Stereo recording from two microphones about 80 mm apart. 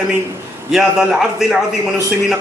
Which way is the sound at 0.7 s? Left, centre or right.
Centre.